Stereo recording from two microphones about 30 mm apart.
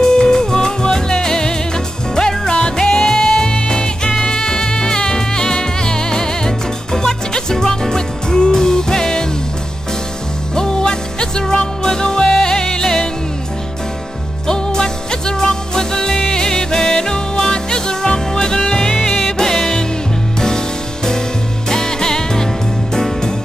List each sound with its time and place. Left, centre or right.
0.0 s music: left
3.3 s music: left
10.5 s music: left
14.5 s music: left